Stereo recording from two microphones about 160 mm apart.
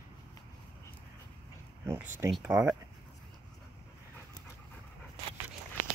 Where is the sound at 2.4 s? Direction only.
10° right (ahead or behind).